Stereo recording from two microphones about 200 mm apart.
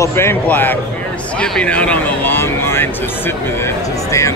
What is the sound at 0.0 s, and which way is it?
Speech, 10° left (ahead or behind).